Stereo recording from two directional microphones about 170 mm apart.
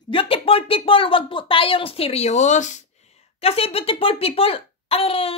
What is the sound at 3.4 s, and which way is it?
A child's voice, 35° left (ahead or behind).